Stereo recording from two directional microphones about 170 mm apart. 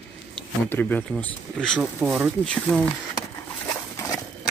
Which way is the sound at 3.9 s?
15° left (ahead or behind).